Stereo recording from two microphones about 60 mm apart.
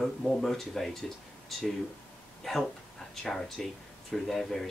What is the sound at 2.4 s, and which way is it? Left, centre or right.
Speech, centre.